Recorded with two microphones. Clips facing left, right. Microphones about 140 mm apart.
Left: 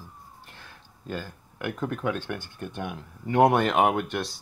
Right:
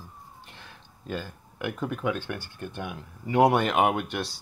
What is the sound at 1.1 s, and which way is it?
Speech, 10° right (ahead or behind).